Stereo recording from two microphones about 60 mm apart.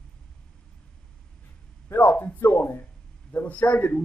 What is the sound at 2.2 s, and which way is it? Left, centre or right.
A man's voice, left.